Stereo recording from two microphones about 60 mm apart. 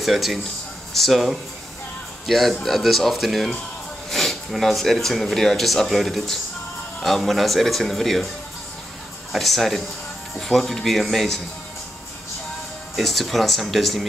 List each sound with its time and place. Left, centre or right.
0.0 s speech: centre
9.3 s speech: centre
12.9 s speech: centre